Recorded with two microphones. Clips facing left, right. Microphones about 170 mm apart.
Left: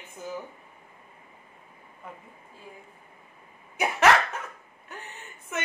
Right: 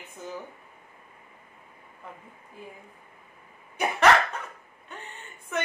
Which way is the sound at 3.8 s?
5° left (ahead or behind).